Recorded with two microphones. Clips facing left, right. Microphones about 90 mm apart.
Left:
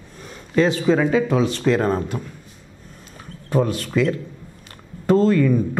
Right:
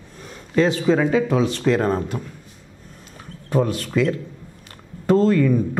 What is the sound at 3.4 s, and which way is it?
A man's voice, 15° left (ahead or behind).